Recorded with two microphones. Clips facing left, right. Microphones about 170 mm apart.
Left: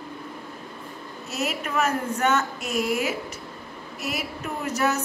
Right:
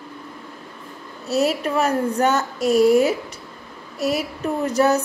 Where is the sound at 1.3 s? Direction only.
35° right (ahead or behind).